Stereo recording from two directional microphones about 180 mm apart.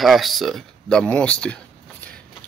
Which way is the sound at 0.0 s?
Centre (ahead or behind).